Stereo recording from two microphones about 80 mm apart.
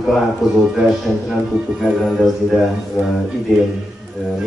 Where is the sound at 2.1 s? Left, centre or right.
Centre.